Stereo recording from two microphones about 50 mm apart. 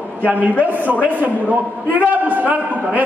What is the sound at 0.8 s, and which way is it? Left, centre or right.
A man's voice, right.